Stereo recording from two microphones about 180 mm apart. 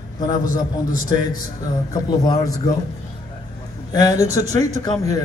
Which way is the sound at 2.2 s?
25° left (ahead or behind).